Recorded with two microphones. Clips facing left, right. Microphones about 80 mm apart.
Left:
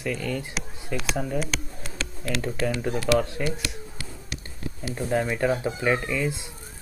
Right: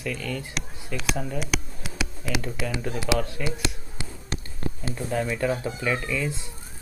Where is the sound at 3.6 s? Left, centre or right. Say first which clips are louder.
Right 3 dB; right.